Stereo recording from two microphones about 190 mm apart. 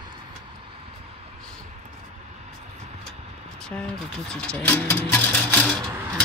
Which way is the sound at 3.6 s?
5° left (ahead or behind).